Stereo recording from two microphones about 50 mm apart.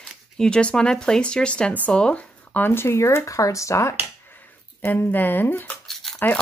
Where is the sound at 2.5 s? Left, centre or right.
Left.